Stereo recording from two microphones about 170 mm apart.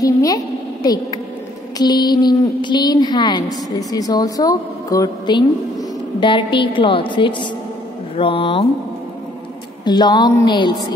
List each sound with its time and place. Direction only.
0.0 s a sound: 20° left (ahead or behind)
0.8 s a woman's voice: 20° left (ahead or behind)
9.8 s a woman's voice: 25° left (ahead or behind)